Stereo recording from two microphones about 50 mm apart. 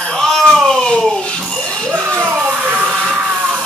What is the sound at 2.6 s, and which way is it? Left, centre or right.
Music, right.